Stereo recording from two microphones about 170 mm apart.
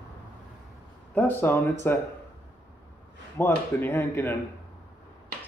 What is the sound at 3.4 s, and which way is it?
Speech, 15° left (ahead or behind).